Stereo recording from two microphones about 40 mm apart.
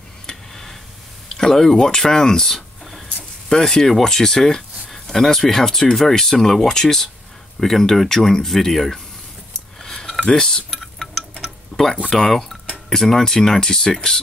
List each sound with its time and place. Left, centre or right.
0.3 s tick: centre
1.3 s speech: centre
9.8 s a sound: centre
10.3 s speech: centre
10.7 s a sound: centre
11.7 s speech: centre